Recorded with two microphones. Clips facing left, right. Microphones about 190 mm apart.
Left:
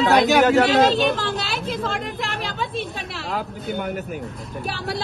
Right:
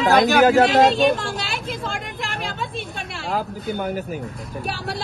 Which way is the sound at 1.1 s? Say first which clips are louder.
Left 1 dB; centre (ahead or behind).